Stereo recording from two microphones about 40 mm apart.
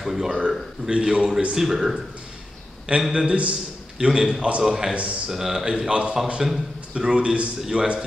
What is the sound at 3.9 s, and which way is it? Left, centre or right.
A man's voice, centre.